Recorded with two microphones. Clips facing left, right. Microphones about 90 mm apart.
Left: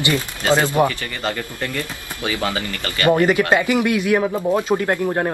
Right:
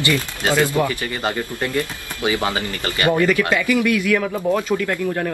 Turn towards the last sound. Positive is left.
turn(degrees=35)  # may be behind; listen again after turning